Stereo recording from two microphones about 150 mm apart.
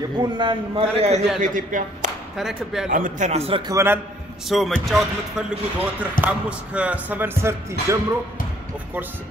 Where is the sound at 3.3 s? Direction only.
40° right (ahead or behind).